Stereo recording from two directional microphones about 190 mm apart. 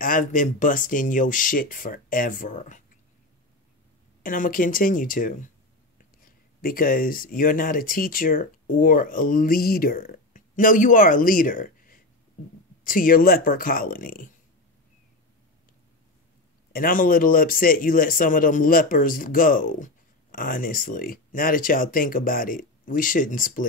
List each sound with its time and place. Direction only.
0.0 s speech: 45° left (ahead or behind)
4.2 s speech: 45° left (ahead or behind)
16.7 s speech: 45° left (ahead or behind)